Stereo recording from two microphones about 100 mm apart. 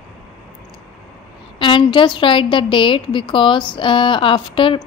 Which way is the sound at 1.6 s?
55° left (ahead or behind).